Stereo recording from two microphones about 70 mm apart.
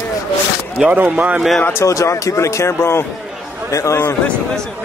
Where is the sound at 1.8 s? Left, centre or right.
Left.